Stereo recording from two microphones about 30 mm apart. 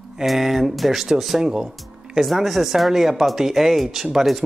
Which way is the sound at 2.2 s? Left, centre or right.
Centre.